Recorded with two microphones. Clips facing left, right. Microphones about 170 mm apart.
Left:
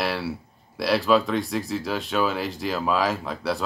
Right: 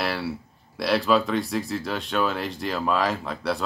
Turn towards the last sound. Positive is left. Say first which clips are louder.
# even
turn(degrees=0)  # may be behind; listen again after turning